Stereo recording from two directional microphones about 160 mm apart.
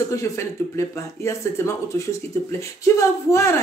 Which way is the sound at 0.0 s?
20° left (ahead or behind).